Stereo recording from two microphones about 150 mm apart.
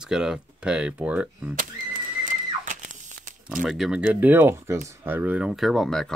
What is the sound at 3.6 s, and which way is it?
Speech, centre (ahead or behind).